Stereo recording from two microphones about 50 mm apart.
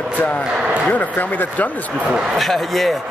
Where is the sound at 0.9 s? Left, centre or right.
Left.